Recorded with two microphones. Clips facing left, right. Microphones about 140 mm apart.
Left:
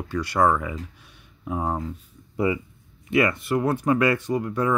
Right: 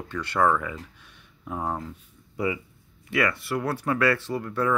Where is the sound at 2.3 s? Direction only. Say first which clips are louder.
Left 4 dB; 30° left (ahead or behind).